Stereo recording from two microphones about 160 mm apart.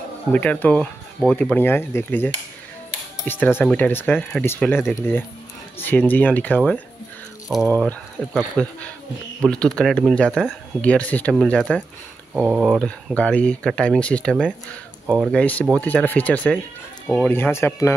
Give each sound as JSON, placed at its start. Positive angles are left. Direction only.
{"t": 0.3, "sound": "speech", "side_deg": 10}
{"t": 12.4, "sound": "speech", "side_deg": -5}
{"t": 12.7, "sound": "speech", "side_deg": 5}